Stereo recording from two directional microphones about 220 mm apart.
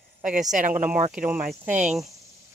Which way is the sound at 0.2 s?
35° right (ahead or behind).